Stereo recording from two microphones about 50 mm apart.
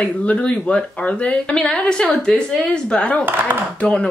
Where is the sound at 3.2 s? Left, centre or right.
Right.